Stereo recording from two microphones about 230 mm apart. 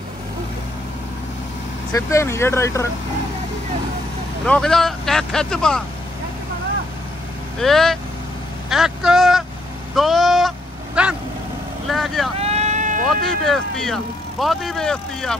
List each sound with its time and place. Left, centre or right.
1.9 s speech: centre
4.5 s speech: centre
7.6 s speech: centre
8.6 s vehicle: centre
9.9 s a sound: centre
11.0 s speech: centre
12.4 s sheep: right
13.2 s speech: centre